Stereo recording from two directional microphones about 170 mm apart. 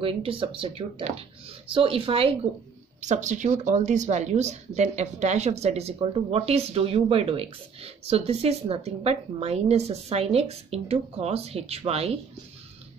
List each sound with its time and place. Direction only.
0.0 s speech: 30° right (ahead or behind)
3.0 s speech: 45° right (ahead or behind)